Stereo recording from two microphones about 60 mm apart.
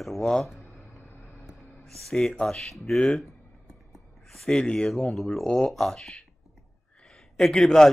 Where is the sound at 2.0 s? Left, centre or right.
Centre.